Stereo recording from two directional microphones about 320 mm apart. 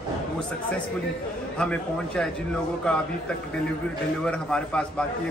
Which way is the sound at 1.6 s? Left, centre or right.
Centre.